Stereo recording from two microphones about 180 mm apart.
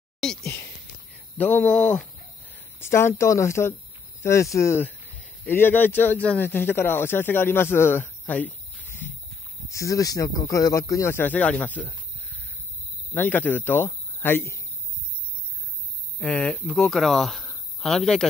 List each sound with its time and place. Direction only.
0.2 s speech: 5° left (ahead or behind)
13.1 s speech: 10° left (ahead or behind)
16.2 s speech: 5° left (ahead or behind)